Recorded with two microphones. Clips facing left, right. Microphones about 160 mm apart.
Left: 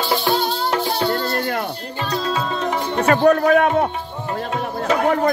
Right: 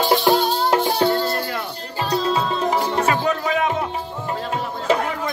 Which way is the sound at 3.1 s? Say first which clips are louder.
Left 7 dB; 60° left (ahead or behind).